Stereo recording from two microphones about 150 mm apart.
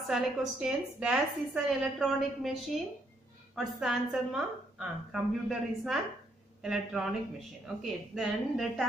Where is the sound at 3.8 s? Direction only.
Centre (ahead or behind).